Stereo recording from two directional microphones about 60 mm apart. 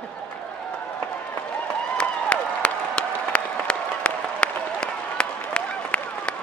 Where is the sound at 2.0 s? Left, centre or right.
Centre.